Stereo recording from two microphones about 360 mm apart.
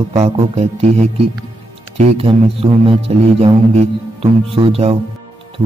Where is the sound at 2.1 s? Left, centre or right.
Centre.